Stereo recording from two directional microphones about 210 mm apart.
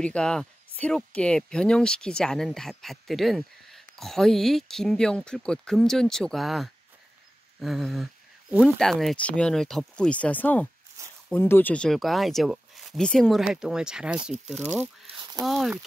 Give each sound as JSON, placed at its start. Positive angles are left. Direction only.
{"t": 0.0, "sound": "speech", "side_deg": 5}
{"t": 14.3, "sound": "speech", "side_deg": -30}
{"t": 15.0, "sound": "a sound", "side_deg": -20}
{"t": 15.4, "sound": "speech", "side_deg": 0}